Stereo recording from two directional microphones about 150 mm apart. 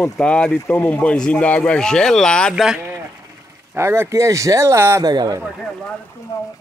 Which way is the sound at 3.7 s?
15° right (ahead or behind).